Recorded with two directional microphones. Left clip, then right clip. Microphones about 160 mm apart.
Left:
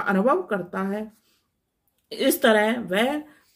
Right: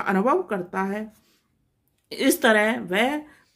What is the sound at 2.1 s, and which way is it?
Speech, 15° right (ahead or behind).